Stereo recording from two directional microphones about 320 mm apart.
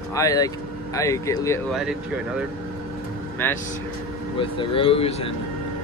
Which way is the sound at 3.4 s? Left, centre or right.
Centre.